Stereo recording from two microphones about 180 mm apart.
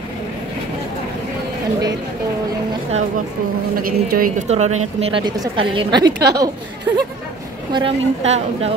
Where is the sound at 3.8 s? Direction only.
55° right (ahead or behind); by 6.1 s 25° right (ahead or behind).